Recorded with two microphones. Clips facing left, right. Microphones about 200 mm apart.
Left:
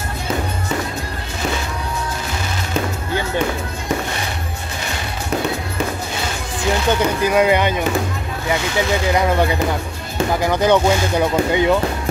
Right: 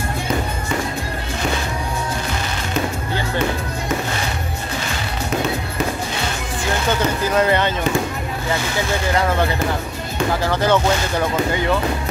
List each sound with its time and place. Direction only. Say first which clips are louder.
7.2 s speech: left 2 dB; 10° left (ahead or behind)
10.4 s speech: left 3 dB; 15° left (ahead or behind)